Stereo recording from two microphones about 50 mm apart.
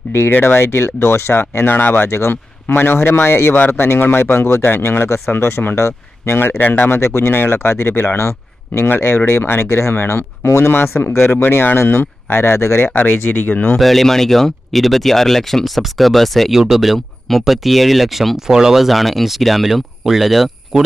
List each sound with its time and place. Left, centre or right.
0.1 s speech: left
0.7 s speech: left
2.0 s speech: left
2.7 s speech: left
10.8 s speech: left
12.9 s speech: left
13.7 s speech: centre